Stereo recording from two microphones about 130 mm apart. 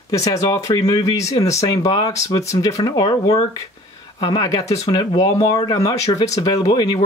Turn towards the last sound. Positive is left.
turn(degrees=30)  # may be behind; listen again after turning